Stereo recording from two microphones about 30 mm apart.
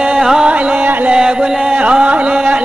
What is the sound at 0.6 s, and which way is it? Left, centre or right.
Music, right.